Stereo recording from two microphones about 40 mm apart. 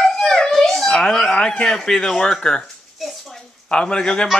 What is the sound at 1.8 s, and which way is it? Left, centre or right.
Speech, centre.